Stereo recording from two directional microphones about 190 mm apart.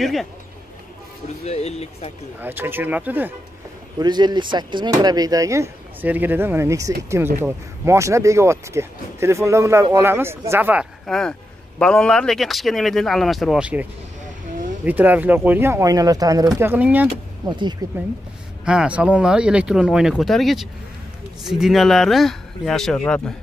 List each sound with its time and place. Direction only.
0.0 s speech: centre (ahead or behind)
1.4 s speech: 35° left (ahead or behind)
2.4 s speech: 10° right (ahead or behind)
4.0 s speech: 20° right (ahead or behind); by 13.8 s 5° right (ahead or behind)
14.9 s speech: 10° right (ahead or behind)
17.5 s speech: 25° right (ahead or behind)
18.7 s speech: 5° right (ahead or behind)